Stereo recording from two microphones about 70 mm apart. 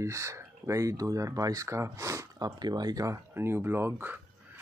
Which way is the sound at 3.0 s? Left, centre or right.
Right.